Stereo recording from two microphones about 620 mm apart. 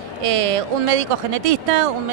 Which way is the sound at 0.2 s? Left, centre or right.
Right.